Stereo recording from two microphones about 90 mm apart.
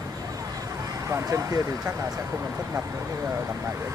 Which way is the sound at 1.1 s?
35° right (ahead or behind).